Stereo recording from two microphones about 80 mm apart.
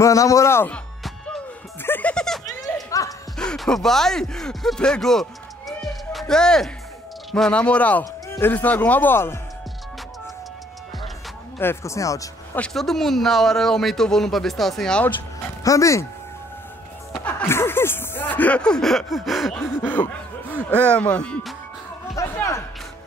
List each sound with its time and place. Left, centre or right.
0.0 s speech: left
1.8 s music: left
2.1 s a sound: centre
2.4 s a sound: left
3.3 s speech: centre
5.7 s music: centre
7.3 s speech: centre; by 9.4 s left
11.6 s speech: left
12.7 s speech: centre
15.6 s speech: left
17.5 s speech: left; by 19.5 s centre
19.8 s speech: left
22.2 s music: left